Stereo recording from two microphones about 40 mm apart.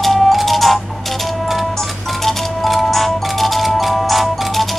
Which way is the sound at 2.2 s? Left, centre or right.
Centre.